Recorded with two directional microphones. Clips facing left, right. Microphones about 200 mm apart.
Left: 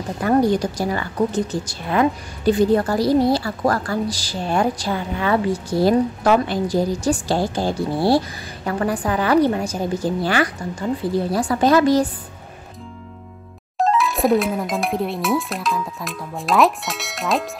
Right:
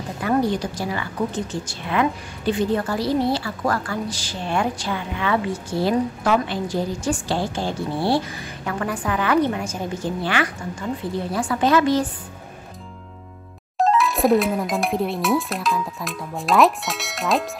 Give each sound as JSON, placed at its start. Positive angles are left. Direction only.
{"t": 0.2, "sound": "a woman's voice", "side_deg": 45}
{"t": 13.7, "sound": "speech", "side_deg": 0}